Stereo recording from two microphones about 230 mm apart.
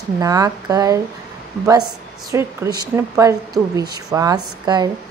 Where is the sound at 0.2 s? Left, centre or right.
Centre.